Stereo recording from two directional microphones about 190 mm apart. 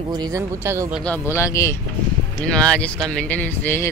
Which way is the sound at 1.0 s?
10° left (ahead or behind).